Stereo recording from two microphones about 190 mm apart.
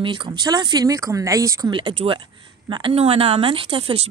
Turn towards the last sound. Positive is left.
turn(degrees=-30)  # may be behind; listen again after turning